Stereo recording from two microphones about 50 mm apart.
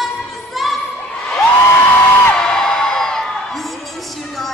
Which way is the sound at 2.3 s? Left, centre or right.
Centre.